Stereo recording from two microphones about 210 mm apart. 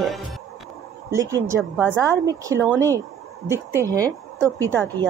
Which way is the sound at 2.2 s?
15° right (ahead or behind).